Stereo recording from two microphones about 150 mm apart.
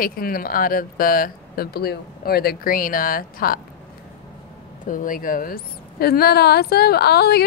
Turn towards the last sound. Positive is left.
turn(degrees=90)